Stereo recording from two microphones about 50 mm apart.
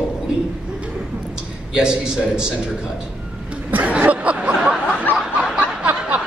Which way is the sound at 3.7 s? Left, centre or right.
Right.